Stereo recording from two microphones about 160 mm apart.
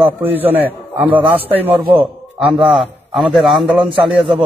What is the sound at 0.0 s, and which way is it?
Speech, 10° right (ahead or behind).